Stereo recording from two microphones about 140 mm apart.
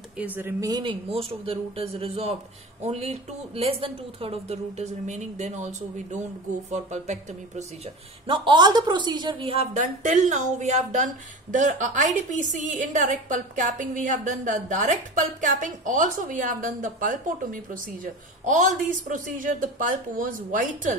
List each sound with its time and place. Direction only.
0.2 s a woman's voice: 15° right (ahead or behind)
0.7 s speech: 30° right (ahead or behind)
1.1 s speech: 45° right (ahead or behind)
8.3 s a woman's voice: 35° right (ahead or behind)
9.8 s a woman's voice: 60° right (ahead or behind)